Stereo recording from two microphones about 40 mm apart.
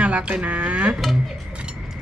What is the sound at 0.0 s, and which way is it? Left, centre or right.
Speech, right.